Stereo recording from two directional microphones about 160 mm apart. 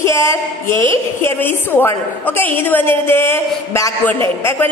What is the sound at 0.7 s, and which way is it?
Speech, 30° right (ahead or behind).